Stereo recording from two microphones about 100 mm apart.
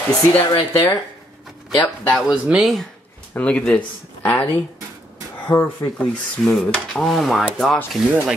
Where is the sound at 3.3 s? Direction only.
15° left (ahead or behind).